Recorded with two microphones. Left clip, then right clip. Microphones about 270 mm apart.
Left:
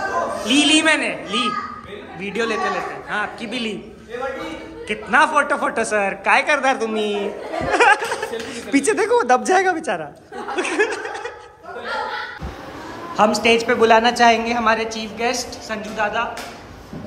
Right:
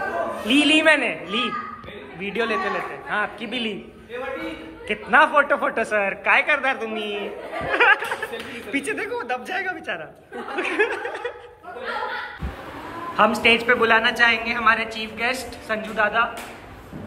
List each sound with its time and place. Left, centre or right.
0.5 s a man's voice: centre
4.8 s a woman's voice: centre
7.7 s music: centre
8.7 s a woman's voice: centre
10.5 s snicker: centre
13.1 s a woman's voice: centre